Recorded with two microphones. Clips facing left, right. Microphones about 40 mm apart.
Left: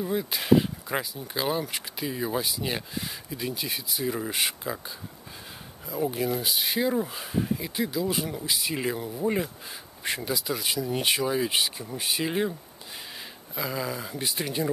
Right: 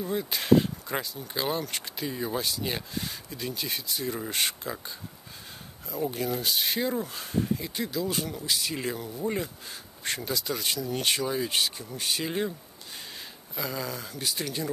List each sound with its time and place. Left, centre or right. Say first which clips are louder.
0.0 s speech: left 2 dB; centre
13.6 s speech: left 3 dB; centre